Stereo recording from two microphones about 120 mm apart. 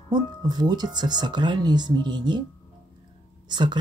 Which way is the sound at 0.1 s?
35° right (ahead or behind).